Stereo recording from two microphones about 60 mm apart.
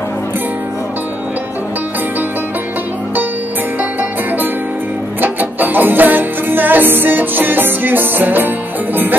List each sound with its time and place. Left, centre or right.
5.2 s music: right